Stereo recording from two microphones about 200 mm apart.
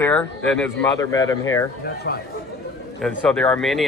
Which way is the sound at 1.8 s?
50° left (ahead or behind).